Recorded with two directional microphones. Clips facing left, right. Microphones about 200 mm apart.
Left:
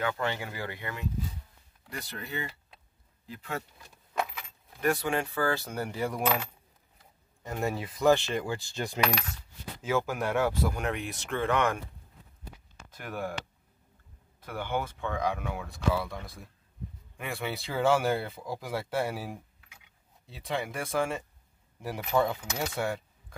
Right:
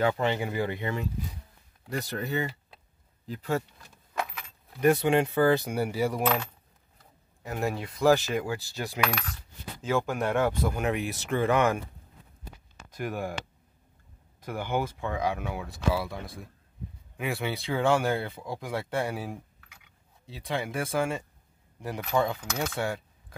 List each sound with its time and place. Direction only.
0.2 s speech: 20° right (ahead or behind)
1.9 s speech: 45° right (ahead or behind)
4.7 s speech: 20° right (ahead or behind)
6.2 s speech: 10° left (ahead or behind)
7.4 s speech: 5° right (ahead or behind)
12.9 s speech: 15° right (ahead or behind)
17.2 s speech: 5° right (ahead or behind)